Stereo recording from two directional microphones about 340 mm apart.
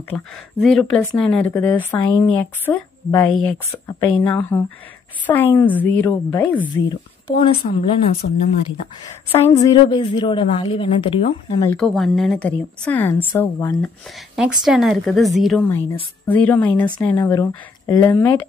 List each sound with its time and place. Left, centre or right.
0.1 s speech: centre
7.7 s a woman's voice: left; by 18.4 s centre